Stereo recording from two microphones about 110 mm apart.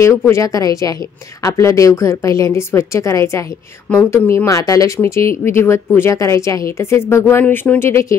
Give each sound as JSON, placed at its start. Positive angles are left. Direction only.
{"t": 0.3, "sound": "a woman's voice", "side_deg": 30}
{"t": 3.9, "sound": "a woman's voice", "side_deg": 15}
{"t": 4.5, "sound": "a woman's voice", "side_deg": 30}